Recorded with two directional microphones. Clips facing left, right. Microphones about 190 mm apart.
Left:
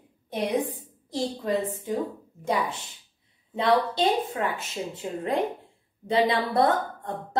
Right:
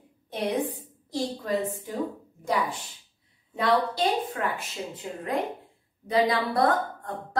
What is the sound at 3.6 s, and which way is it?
A woman's voice, 20° left (ahead or behind).